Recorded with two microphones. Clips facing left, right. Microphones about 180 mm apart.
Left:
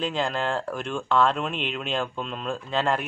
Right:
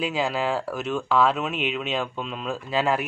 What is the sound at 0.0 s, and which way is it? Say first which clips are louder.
A man's voice: right 1 dB; 5° right (ahead or behind).